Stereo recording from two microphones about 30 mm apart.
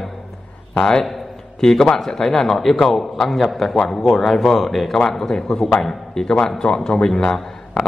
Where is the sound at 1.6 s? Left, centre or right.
Centre.